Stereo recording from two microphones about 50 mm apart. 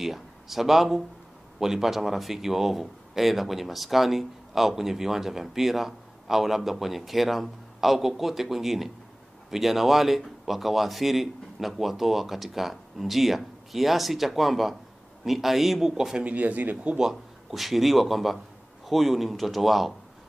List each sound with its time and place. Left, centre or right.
0.0 s a man's voice: centre
16.3 s speech: right
16.9 s a man's voice: centre